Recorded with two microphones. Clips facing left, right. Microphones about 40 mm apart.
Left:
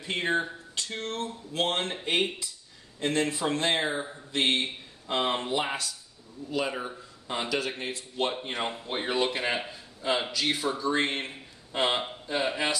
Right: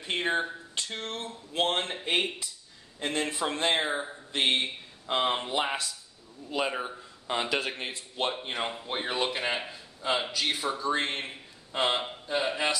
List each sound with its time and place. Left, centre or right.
0.0 s speech: centre
1.6 s speech: centre
3.0 s speech: centre
8.3 s a man's voice: centre
10.6 s speech: centre